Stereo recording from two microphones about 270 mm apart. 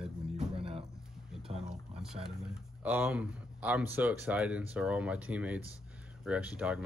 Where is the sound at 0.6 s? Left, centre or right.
Right.